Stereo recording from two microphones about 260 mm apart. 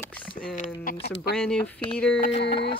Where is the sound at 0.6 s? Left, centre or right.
Left.